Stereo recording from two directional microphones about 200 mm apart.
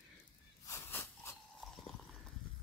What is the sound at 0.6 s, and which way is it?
Wheeze, 15° left (ahead or behind).